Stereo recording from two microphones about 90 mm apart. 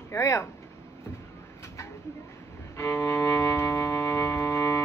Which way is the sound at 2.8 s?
30° left (ahead or behind).